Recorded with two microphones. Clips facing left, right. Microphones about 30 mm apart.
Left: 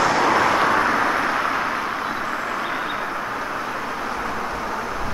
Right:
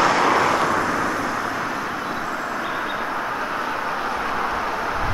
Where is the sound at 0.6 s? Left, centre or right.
Left.